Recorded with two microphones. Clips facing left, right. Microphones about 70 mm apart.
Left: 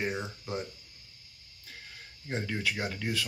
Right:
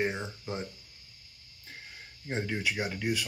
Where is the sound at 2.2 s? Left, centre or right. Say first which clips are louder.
Right 1 dB; centre.